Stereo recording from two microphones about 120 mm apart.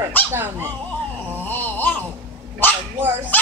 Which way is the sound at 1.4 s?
15° left (ahead or behind).